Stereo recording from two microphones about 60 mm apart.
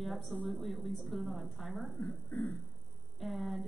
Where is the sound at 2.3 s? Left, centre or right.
Left.